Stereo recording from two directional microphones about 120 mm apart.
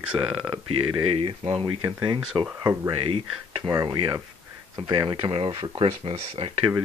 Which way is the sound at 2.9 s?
50° right (ahead or behind).